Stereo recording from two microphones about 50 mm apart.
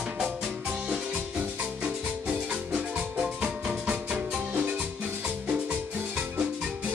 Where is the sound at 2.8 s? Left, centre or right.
Centre.